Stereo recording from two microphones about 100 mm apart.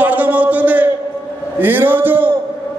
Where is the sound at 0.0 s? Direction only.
15° right (ahead or behind).